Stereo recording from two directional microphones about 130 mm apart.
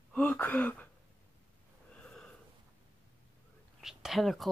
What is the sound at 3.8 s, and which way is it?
Speech, 5° right (ahead or behind).